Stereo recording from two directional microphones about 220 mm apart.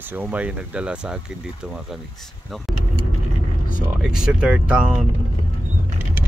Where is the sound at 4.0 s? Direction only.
5° right (ahead or behind).